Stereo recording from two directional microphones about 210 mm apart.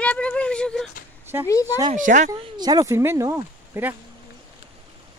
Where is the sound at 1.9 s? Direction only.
35° right (ahead or behind).